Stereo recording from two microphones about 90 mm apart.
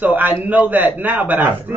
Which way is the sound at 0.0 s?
20° right (ahead or behind).